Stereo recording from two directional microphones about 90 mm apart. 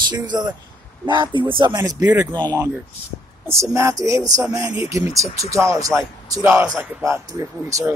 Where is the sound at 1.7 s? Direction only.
40° right (ahead or behind).